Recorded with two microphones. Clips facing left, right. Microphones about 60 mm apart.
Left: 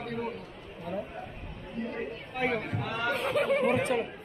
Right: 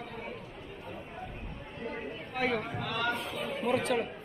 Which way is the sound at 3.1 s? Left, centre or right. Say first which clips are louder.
Left 7 dB; left.